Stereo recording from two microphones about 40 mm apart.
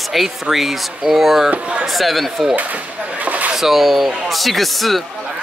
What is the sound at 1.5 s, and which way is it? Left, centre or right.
Speech, right.